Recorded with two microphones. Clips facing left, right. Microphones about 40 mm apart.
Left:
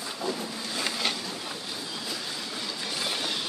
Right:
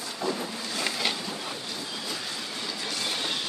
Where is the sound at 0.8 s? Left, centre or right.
Centre.